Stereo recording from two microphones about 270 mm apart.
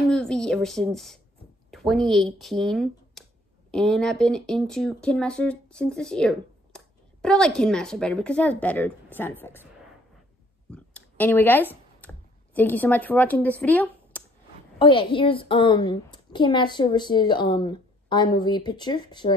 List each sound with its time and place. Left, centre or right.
0.0 s speech: centre
10.7 s a sound: centre
14.8 s a woman's voice: centre